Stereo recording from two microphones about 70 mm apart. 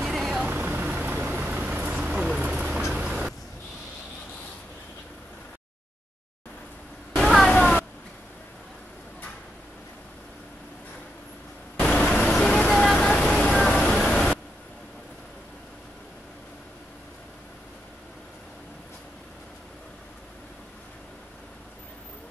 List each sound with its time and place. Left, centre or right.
0.0 s vehicle: centre
0.5 s vehicle: right
7.2 s a sound: centre
11.8 s vehicle: centre